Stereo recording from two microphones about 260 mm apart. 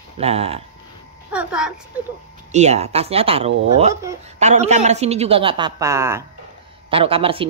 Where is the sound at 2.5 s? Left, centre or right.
Right.